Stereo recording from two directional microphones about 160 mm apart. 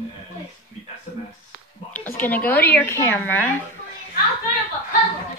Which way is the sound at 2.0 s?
10° left (ahead or behind).